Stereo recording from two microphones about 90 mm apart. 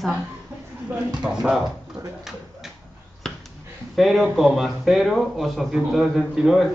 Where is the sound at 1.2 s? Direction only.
5° right (ahead or behind).